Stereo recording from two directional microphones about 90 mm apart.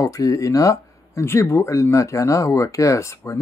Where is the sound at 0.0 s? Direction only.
40° left (ahead or behind).